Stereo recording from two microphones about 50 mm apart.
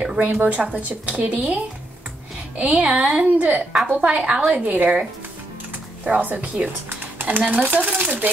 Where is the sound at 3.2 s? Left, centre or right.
Right.